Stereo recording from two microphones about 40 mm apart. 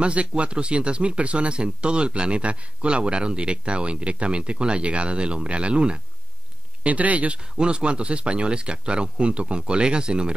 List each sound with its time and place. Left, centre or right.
0.0 s speech: right
6.8 s speech: right
7.5 s speech: right